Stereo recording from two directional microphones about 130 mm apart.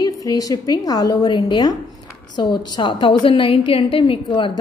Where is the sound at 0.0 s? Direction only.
30° left (ahead or behind).